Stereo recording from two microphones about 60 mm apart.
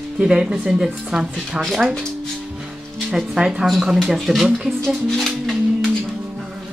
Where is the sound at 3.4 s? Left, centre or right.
Centre.